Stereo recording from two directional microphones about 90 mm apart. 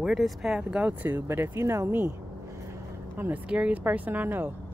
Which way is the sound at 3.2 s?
15° right (ahead or behind).